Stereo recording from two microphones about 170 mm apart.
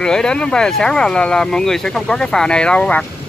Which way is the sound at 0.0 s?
5° left (ahead or behind).